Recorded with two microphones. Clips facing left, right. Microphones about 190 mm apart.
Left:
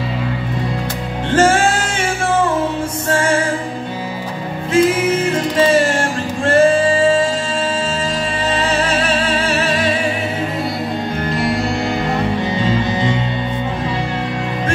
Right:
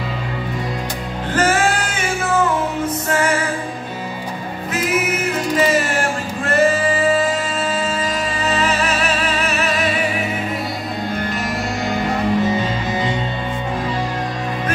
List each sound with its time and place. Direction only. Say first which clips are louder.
1.3 s music: left 4 dB; 30° left (ahead or behind)
4.7 s music: left 7 dB; 30° left (ahead or behind)
6.4 s singing: left 4 dB; 30° left (ahead or behind)
8.5 s music: left 1 dB; 30° left (ahead or behind)